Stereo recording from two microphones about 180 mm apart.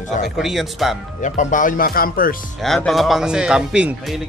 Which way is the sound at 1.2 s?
45° left (ahead or behind).